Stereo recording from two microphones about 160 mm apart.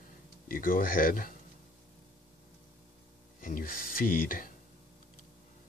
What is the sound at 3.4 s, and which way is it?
Speech, 60° left (ahead or behind).